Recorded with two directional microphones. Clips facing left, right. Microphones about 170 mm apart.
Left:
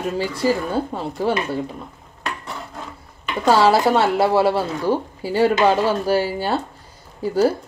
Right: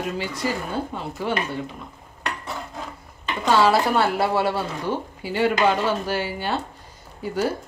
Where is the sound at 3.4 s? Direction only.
30° left (ahead or behind).